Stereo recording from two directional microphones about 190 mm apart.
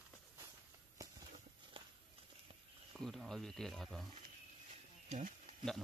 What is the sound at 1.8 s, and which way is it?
Walk, 25° right (ahead or behind).